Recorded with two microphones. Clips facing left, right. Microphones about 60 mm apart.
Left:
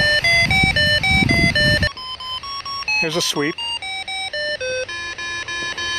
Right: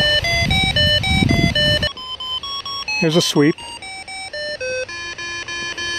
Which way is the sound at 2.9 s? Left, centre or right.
Left.